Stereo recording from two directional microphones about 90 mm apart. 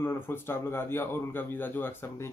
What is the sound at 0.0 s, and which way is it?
Speech, 25° left (ahead or behind).